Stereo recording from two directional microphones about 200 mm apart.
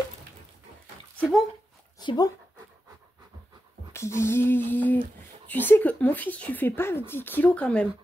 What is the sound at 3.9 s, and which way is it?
A woman's voice, 15° left (ahead or behind).